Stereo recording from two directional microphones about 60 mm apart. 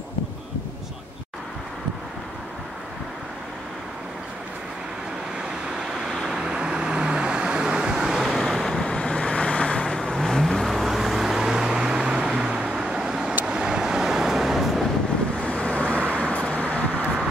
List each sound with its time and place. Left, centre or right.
5.9 s vehicle: centre
8.8 s vehicle: centre
15.4 s vehicle: left